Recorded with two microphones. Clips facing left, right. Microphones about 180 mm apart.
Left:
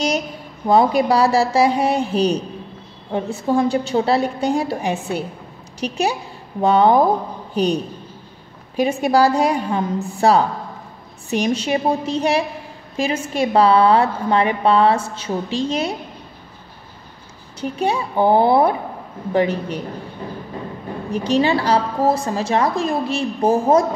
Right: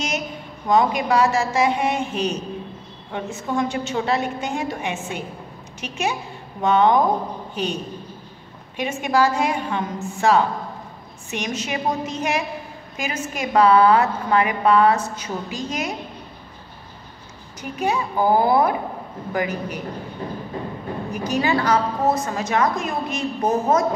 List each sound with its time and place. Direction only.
0.7 s a woman's voice: 35° left (ahead or behind)
17.6 s a woman's voice: 30° left (ahead or behind)
21.1 s a woman's voice: 30° left (ahead or behind)